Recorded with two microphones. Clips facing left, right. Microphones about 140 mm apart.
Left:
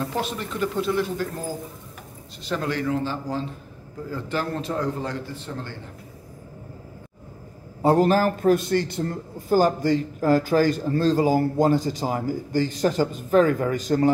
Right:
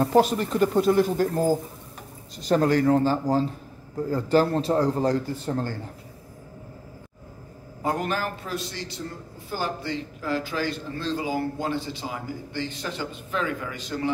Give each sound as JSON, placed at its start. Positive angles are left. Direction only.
{"t": 0.0, "sound": "a man's voice", "side_deg": -40}
{"t": 7.8, "sound": "a man's voice", "side_deg": 35}